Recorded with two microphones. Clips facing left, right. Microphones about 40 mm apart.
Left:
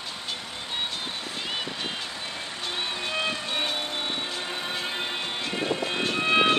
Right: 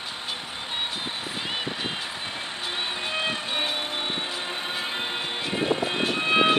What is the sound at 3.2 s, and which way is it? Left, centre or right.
Vehicle, right.